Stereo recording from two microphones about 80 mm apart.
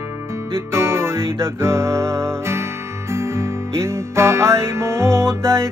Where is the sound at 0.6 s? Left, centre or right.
Right.